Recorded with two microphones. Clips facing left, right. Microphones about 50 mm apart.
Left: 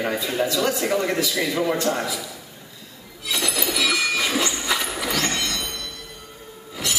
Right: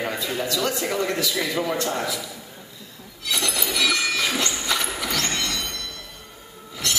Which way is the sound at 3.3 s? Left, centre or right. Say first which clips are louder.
Left 1 dB; centre.